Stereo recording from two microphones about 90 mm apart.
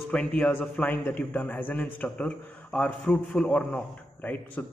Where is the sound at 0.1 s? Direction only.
10° left (ahead or behind).